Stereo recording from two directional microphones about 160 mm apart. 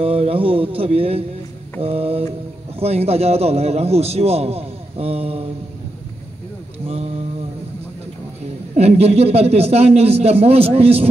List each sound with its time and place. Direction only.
0.0 s a man's voice: 35° right (ahead or behind)
8.7 s a man's voice: 40° right (ahead or behind)